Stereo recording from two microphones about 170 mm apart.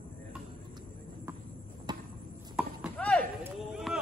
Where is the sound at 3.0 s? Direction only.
5° left (ahead or behind).